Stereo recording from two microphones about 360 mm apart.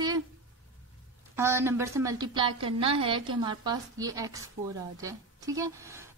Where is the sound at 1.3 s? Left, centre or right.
Centre.